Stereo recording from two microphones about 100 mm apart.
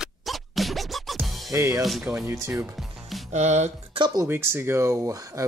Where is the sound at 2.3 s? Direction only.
20° right (ahead or behind).